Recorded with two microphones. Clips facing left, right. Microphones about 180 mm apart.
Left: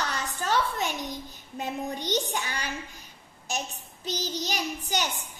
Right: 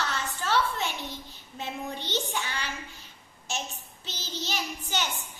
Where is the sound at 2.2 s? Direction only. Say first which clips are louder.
Left 1 dB; 40° left (ahead or behind).